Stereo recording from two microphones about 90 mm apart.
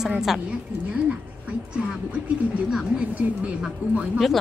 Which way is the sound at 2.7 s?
5° right (ahead or behind).